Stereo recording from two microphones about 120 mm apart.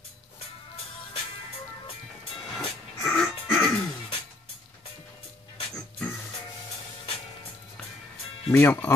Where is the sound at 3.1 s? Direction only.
5° left (ahead or behind).